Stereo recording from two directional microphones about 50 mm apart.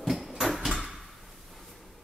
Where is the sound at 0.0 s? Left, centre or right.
Centre.